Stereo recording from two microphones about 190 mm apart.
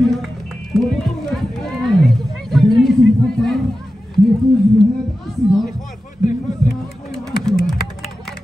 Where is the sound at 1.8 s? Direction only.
Centre (ahead or behind).